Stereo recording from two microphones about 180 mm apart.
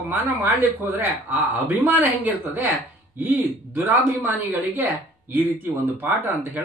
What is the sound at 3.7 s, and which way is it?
Speech, 10° right (ahead or behind).